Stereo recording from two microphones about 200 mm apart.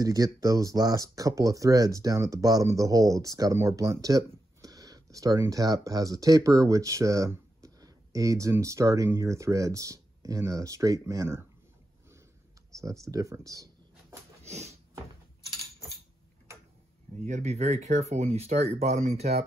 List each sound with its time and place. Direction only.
0.0 s speech: 20° right (ahead or behind)
12.8 s speech: 15° right (ahead or behind)
14.4 s a sound: 35° right (ahead or behind)
17.1 s speech: 35° right (ahead or behind)